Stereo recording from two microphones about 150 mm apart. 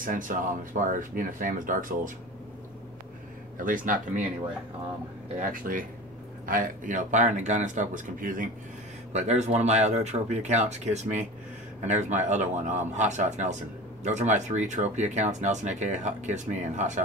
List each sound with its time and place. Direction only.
0.0 s speech: 60° right (ahead or behind)
3.5 s speech: 65° right (ahead or behind)
5.4 s speech: 65° right (ahead or behind)
9.1 s speech: 50° right (ahead or behind)